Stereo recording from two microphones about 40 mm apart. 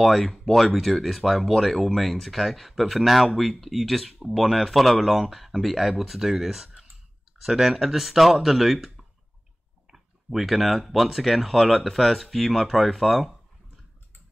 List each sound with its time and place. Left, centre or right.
0.0 s speech: centre
9.8 s speech: centre